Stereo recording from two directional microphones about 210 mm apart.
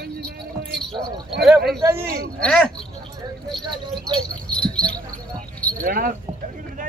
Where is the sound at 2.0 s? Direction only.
45° right (ahead or behind).